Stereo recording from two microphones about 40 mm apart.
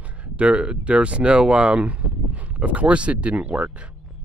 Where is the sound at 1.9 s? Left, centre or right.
Right.